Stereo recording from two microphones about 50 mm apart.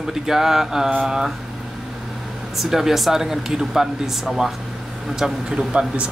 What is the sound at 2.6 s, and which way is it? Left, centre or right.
Speech, centre.